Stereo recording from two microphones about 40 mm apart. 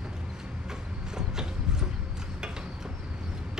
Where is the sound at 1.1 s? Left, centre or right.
Centre.